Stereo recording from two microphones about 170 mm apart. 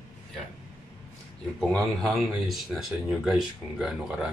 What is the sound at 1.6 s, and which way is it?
Speech, centre (ahead or behind).